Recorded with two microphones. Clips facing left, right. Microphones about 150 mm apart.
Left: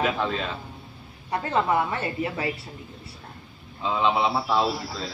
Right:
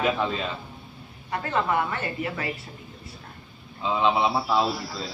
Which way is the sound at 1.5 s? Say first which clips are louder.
Left 2 dB; 25° left (ahead or behind).